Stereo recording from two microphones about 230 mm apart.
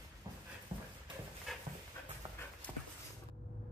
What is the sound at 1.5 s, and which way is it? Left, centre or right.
Dog, centre.